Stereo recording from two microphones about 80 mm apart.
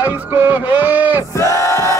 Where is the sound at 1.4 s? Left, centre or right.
Left.